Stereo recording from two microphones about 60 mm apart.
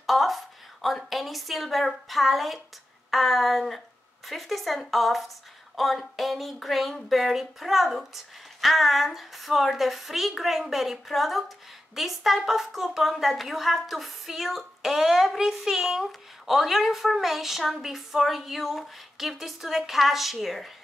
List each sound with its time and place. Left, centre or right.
0.0 s a woman's voice: centre